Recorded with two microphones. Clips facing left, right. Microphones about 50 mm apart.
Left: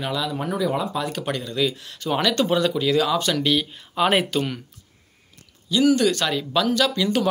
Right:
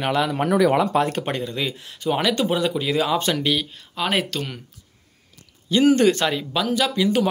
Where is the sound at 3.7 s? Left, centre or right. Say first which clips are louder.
Left 4 dB; centre.